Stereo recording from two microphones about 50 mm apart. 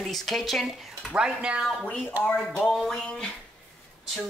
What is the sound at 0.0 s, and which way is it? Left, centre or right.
Speech, centre.